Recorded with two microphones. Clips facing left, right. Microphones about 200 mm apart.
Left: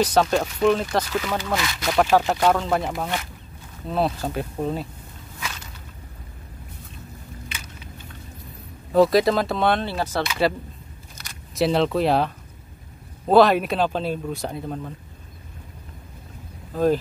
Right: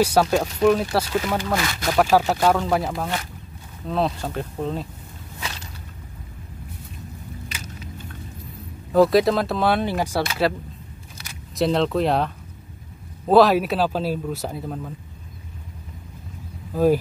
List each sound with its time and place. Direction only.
0.0 s speech: 10° right (ahead or behind); by 4.8 s 10° left (ahead or behind)
7.4 s vehicle: 40° right (ahead or behind)
8.9 s speech: centre (ahead or behind)
10.4 s speech: centre (ahead or behind)
13.3 s speech: centre (ahead or behind)
16.7 s speech: 10° right (ahead or behind)